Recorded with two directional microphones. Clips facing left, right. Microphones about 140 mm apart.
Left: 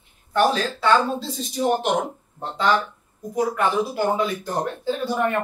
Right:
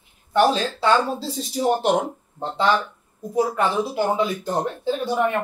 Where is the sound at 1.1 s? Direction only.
35° right (ahead or behind).